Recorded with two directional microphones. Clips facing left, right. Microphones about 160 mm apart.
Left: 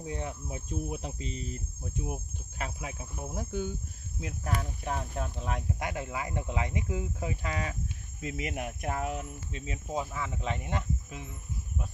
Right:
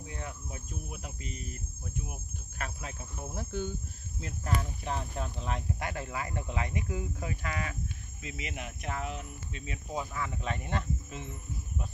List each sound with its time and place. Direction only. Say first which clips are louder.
0.0 s cricket: left 5 dB; 30° left (ahead or behind)
2.6 s speech: left 2 dB; 15° left (ahead or behind)
8.2 s speech: left 6 dB; 45° left (ahead or behind)
9.6 s speech: left 3 dB; 25° left (ahead or behind)